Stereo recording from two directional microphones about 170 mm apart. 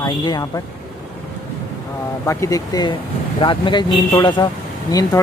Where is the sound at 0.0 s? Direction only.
20° left (ahead or behind).